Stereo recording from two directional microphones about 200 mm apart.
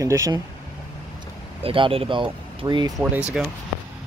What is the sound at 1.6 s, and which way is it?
Speech, 25° right (ahead or behind).